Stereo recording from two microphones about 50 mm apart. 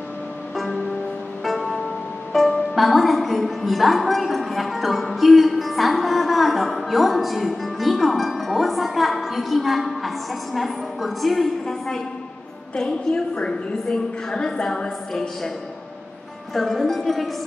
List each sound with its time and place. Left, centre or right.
1.4 s music: centre
2.3 s a woman's voice: centre
12.7 s a woman's voice: centre
16.5 s speech: centre